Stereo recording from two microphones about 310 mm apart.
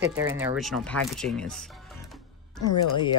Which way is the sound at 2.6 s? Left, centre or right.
Left.